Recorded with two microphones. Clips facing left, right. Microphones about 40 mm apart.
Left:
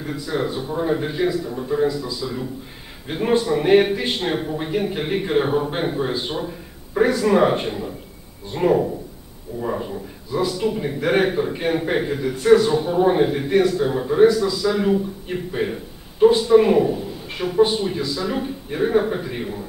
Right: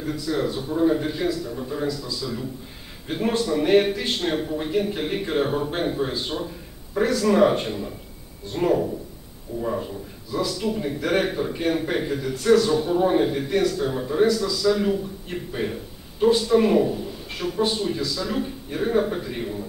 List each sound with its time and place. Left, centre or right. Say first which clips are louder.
0.0 s a man's voice: left 1 dB; centre